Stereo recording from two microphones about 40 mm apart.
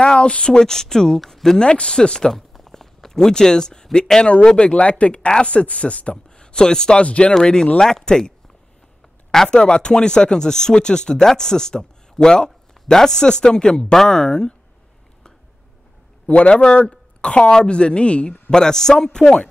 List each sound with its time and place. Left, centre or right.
0.0 s speech: left; by 1.6 s centre
1.6 s speech: left
2.3 s a sound: centre
4.5 s speech: centre
4.7 s speech: left
6.3 s speech: centre
7.0 s speech: left
9.5 s speech: left
16.3 s speech: left
18.6 s speech: centre